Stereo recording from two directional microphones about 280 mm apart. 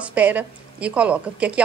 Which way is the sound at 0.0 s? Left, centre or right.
Centre.